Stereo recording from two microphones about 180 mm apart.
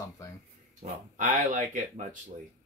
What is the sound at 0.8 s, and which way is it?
Speech, 40° right (ahead or behind).